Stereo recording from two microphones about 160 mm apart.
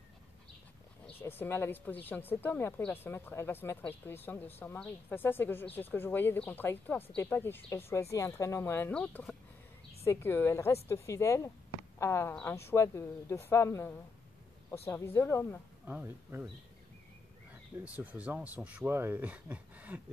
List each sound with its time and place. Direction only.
1.0 s speech: 15° left (ahead or behind)
15.9 s speech: 15° right (ahead or behind)
17.5 s speech: 10° right (ahead or behind)